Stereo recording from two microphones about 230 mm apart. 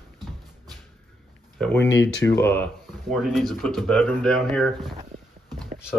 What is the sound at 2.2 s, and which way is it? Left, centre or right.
Speech, centre.